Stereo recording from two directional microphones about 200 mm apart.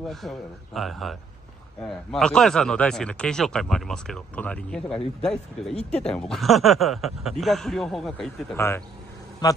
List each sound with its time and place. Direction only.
0.1 s speech: centre (ahead or behind)
5.8 s speech: 30° left (ahead or behind)
6.1 s speech: centre (ahead or behind)
8.5 s a man's voice: 10° left (ahead or behind)